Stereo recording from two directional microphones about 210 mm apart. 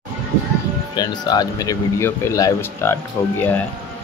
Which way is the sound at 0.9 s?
20° left (ahead or behind).